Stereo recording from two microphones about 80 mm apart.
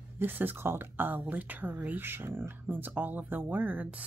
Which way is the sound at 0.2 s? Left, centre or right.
Right.